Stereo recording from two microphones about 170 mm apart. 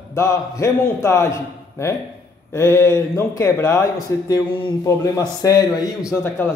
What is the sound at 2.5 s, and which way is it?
A man's voice, 15° left (ahead or behind).